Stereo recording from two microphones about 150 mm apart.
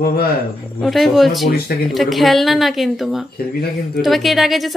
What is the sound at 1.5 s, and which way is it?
Speech, 90° left.